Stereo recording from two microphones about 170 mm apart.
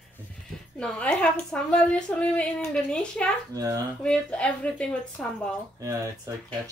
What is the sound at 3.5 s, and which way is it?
Speech, 20° right (ahead or behind).